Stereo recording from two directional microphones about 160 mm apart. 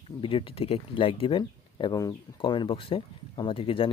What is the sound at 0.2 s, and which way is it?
Speech, 35° left (ahead or behind).